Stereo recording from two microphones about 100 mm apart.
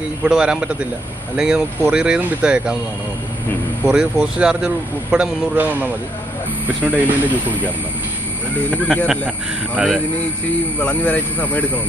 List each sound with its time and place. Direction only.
0.2 s speech: 10° right (ahead or behind)
3.8 s speech: 10° right (ahead or behind)
8.6 s speech: 10° left (ahead or behind)
9.8 s speech: 5° right (ahead or behind)
10.8 s speech: 15° left (ahead or behind)